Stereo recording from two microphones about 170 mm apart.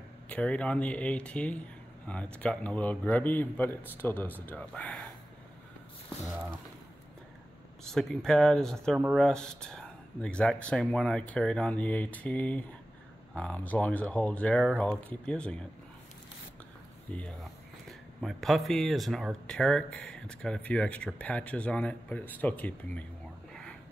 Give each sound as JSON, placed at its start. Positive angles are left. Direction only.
{"t": 0.3, "sound": "speech", "side_deg": 5}
{"t": 6.2, "sound": "speech", "side_deg": 0}
{"t": 7.8, "sound": "speech", "side_deg": 5}
{"t": 17.1, "sound": "speech", "side_deg": 5}
{"t": 23.5, "sound": "a sound", "side_deg": 5}